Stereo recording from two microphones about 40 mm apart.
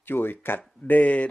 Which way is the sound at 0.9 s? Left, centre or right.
Left.